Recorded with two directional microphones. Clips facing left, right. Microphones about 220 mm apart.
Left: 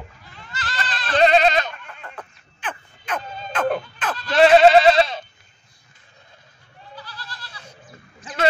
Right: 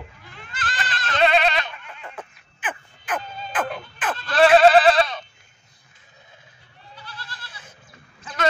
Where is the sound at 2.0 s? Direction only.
5° right (ahead or behind).